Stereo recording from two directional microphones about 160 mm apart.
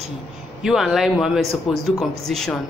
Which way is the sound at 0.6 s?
5° right (ahead or behind).